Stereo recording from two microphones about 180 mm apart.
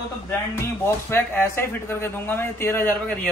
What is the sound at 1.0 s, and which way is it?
Speech, 15° left (ahead or behind).